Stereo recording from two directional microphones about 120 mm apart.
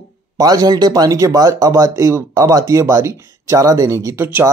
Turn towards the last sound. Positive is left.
turn(degrees=-20)  # may be behind; listen again after turning